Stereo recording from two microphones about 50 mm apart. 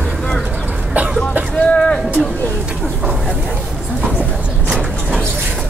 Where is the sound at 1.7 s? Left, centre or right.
Left.